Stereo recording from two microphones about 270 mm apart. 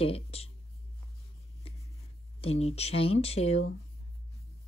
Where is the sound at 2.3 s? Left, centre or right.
Left.